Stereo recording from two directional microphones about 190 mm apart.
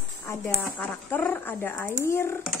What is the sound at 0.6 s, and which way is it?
Speech, 10° left (ahead or behind).